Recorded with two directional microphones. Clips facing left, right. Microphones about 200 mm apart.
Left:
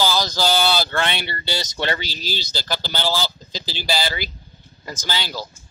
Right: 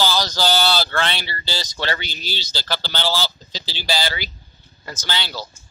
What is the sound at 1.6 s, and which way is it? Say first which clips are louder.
Speech: left 1 dB; 20° left (ahead or behind).